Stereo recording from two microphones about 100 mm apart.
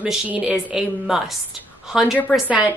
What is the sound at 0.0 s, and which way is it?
Speech, 10° right (ahead or behind).